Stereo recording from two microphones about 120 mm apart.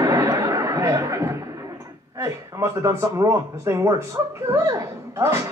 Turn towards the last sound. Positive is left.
turn(degrees=-25)  # may be behind; listen again after turning